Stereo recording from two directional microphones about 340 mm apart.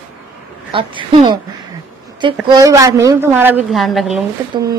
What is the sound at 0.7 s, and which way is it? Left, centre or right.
Speech, centre.